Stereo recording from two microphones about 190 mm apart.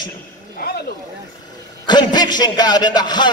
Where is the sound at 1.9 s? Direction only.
20° left (ahead or behind).